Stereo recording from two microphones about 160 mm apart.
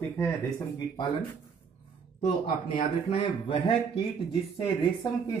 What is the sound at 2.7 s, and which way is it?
Speech, 30° left (ahead or behind).